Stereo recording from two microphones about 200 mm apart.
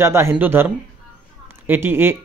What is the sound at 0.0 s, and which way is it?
Speech, 15° right (ahead or behind).